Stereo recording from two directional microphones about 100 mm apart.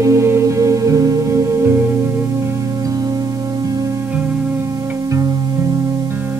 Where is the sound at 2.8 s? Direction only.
35° right (ahead or behind).